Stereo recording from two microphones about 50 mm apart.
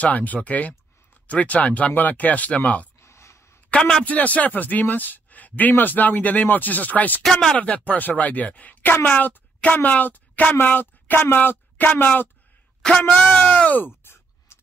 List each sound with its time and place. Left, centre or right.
0.0 s speech: left
3.0 s a sound: left
3.7 s speech: centre
4.0 s speech: left
7.2 s speech: centre
7.5 s speech: left
13.1 s speech: left
13.4 s groan: left
14.5 s a sound: left